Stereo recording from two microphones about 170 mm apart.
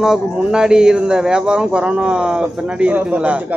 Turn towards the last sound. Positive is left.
turn(degrees=-5)  # may be behind; listen again after turning